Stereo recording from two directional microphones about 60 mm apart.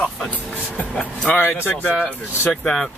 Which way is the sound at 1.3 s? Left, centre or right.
Left.